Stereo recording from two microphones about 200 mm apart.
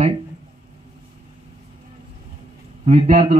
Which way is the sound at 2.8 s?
30° right (ahead or behind).